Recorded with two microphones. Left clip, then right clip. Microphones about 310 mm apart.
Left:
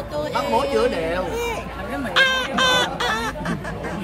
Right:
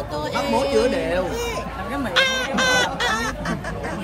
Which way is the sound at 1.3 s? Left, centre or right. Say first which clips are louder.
Left 1 dB; centre.